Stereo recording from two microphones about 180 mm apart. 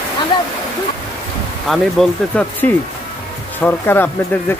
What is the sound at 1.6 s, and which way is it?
A man's voice, 5° left (ahead or behind).